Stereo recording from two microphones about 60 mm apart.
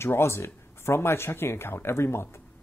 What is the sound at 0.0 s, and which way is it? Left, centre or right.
A man's voice, left.